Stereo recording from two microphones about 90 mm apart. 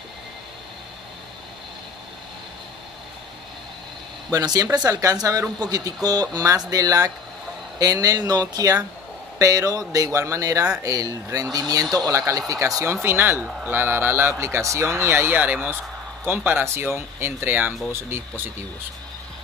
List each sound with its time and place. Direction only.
4.3 s speech: 45° right (ahead or behind); by 18.5 s 25° right (ahead or behind)